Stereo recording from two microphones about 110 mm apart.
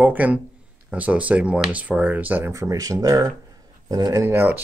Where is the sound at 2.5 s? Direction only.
30° right (ahead or behind).